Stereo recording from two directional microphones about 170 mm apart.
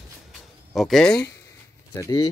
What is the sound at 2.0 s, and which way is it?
Speech, 20° left (ahead or behind).